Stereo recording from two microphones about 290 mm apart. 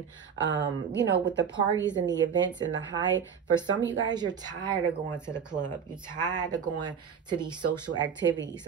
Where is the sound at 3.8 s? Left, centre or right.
Right.